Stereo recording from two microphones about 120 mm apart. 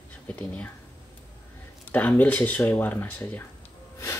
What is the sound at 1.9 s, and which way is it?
Speech, 15° left (ahead or behind).